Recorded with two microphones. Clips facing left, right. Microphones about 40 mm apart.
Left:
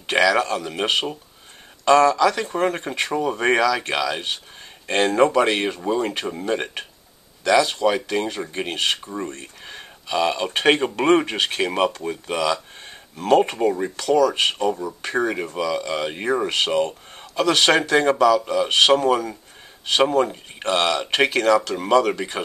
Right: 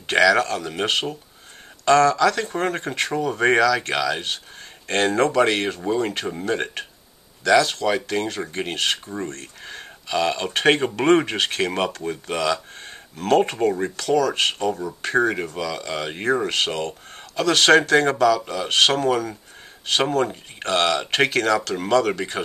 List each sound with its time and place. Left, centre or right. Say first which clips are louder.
0.0 s speech: right 1 dB; centre